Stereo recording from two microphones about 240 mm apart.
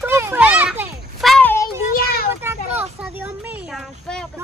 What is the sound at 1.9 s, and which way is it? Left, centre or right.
Child singing, left.